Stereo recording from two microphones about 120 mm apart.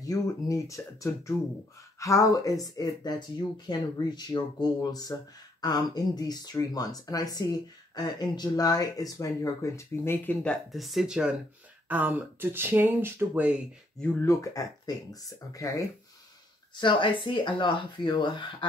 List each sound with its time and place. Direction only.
0.0 s speech: 30° left (ahead or behind); by 13.6 s 15° right (ahead or behind)
14.2 s speech: 25° left (ahead or behind)
16.7 s speech: 40° left (ahead or behind)